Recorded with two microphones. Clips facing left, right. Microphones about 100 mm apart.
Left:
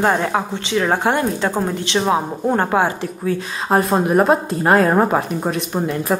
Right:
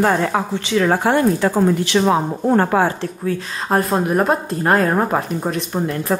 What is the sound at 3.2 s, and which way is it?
Speech, centre (ahead or behind).